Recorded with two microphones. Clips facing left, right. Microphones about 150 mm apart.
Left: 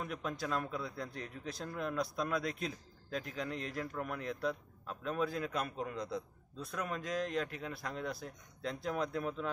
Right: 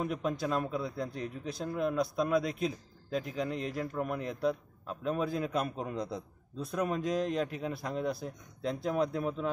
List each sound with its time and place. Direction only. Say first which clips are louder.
0.0 s speech: right 7 dB; 20° right (ahead or behind)